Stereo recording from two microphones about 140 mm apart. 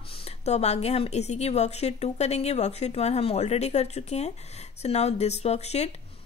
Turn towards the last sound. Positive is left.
turn(degrees=50)  # may be behind; listen again after turning